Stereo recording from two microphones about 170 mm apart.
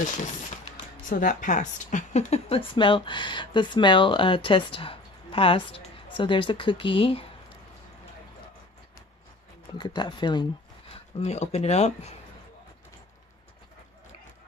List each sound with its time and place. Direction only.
0.0 s speech: 45° left (ahead or behind)
9.8 s speech: 25° left (ahead or behind)